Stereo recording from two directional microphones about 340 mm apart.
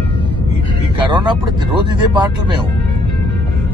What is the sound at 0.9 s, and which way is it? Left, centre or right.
Speech, centre.